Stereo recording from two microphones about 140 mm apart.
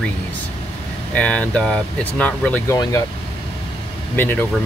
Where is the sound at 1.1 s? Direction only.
10° left (ahead or behind).